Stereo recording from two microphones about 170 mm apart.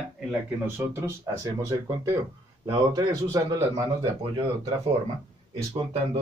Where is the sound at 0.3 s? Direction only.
15° right (ahead or behind).